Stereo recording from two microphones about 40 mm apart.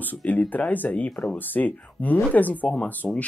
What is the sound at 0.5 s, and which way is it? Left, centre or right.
Speech, left.